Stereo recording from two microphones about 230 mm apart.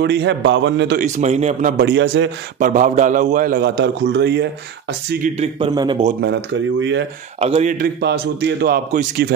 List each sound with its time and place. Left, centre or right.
0.0 s a man's voice: right
0.9 s a man's voice: right
2.6 s a man's voice: right
5.4 s a man's voice: right
6.2 s a man's voice: right
7.3 s a man's voice: right